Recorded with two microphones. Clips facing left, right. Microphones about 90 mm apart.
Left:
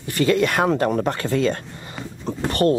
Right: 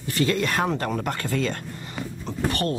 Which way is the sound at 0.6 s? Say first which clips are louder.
Left 6 dB; 30° left (ahead or behind).